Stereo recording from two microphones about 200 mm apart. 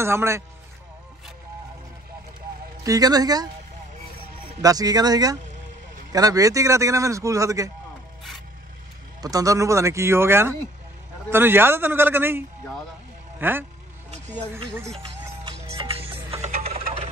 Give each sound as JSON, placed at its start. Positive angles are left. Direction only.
{"t": 0.0, "sound": "a man's voice", "side_deg": -15}
{"t": 2.8, "sound": "a man's voice", "side_deg": -20}
{"t": 4.6, "sound": "a man's voice", "side_deg": -20}
{"t": 9.2, "sound": "a man's voice", "side_deg": -15}
{"t": 15.6, "sound": "music", "side_deg": -30}